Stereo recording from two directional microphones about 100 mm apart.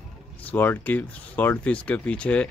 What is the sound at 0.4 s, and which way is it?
Speech, 20° left (ahead or behind).